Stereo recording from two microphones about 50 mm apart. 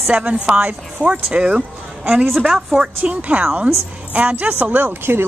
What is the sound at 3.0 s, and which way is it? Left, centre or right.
A woman's voice, right.